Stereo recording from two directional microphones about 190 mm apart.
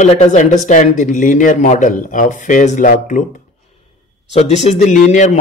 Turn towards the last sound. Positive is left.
turn(degrees=40)  # may be behind; listen again after turning